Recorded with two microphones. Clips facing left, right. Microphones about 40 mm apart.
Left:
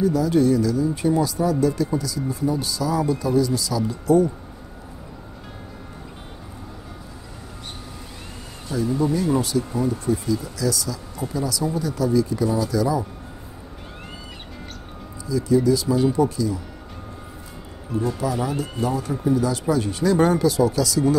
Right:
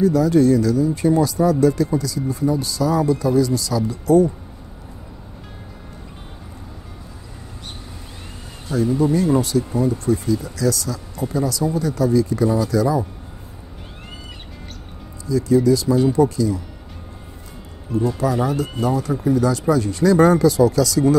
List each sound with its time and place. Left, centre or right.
0.0 s speech: right
8.7 s speech: right
15.2 s speech: right
18.2 s speech: right
19.7 s speech: right
20.0 s speech: right